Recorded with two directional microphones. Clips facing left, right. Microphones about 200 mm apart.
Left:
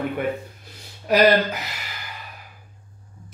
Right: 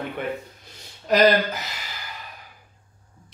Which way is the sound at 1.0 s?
10° left (ahead or behind).